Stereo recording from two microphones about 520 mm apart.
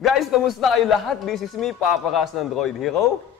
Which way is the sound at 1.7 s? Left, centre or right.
Left.